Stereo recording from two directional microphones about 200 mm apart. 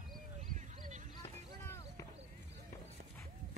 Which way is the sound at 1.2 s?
15° left (ahead or behind).